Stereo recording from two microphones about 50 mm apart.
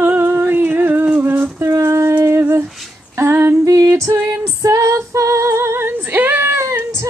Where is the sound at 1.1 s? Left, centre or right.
Right.